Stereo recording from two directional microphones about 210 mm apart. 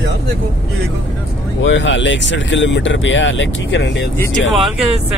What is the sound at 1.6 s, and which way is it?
Speech, 60° left (ahead or behind).